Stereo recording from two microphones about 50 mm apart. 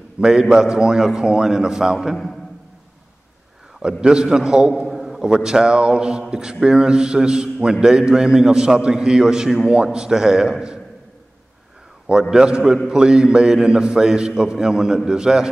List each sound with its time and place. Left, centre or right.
0.2 s a man's voice: centre
3.8 s a man's voice: centre
4.8 s a sound: centre
5.3 s a man's voice: centre
12.2 s a man's voice: centre